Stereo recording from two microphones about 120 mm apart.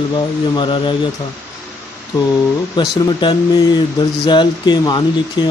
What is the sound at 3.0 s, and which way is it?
Speech, 40° left (ahead or behind).